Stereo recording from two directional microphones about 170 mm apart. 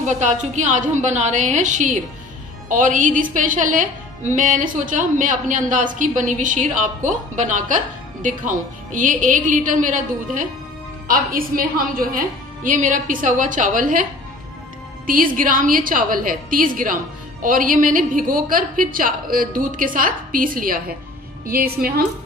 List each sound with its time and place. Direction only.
0.0 s a woman's voice: 45° right (ahead or behind)
15.0 s a woman's voice: 55° right (ahead or behind)